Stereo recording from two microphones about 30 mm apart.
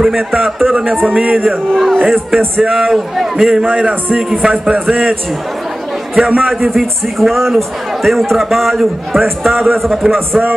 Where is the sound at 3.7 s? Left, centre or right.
Right.